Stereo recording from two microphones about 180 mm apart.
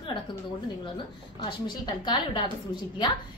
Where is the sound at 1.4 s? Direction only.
25° left (ahead or behind).